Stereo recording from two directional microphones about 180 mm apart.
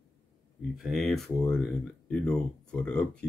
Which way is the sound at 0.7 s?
Centre (ahead or behind).